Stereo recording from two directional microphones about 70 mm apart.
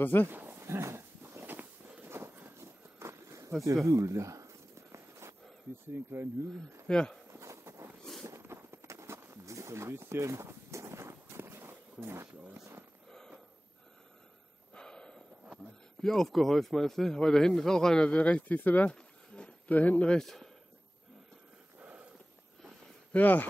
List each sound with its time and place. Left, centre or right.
0.0 s speech: left
0.3 s a sound: right
0.6 s a sound: right
6.9 s a man's voice: centre
7.3 s clip-clop: right
14.7 s gasp: centre
16.0 s a man's voice: centre; by 18.9 s left
18.9 s a sound: centre
20.2 s speech: centre
23.1 s speech: left